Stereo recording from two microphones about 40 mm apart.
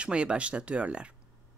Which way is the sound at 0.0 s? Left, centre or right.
Right.